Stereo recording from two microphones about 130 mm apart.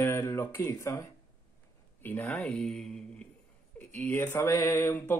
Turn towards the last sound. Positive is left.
turn(degrees=15)  # may be behind; listen again after turning